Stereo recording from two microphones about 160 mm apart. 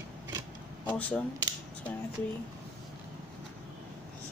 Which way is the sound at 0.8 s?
10° left (ahead or behind).